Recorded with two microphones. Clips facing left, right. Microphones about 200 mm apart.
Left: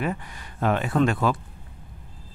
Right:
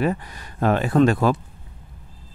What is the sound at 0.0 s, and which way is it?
Speech, 40° right (ahead or behind).